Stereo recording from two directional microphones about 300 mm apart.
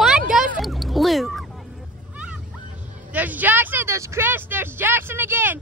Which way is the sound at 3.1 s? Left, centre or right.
Centre.